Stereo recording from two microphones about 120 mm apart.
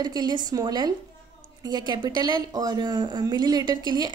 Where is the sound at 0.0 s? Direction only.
35° right (ahead or behind).